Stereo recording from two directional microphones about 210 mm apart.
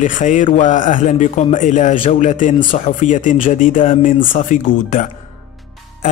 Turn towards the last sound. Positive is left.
turn(degrees=35)  # may be behind; listen again after turning